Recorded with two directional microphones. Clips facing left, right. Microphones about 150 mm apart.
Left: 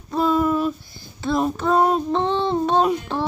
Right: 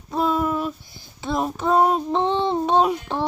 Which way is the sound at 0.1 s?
5° right (ahead or behind).